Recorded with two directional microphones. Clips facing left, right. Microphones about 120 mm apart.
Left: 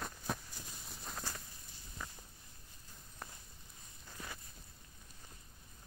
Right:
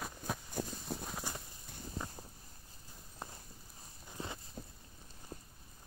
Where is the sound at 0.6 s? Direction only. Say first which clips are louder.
Right 14 dB; 55° right (ahead or behind).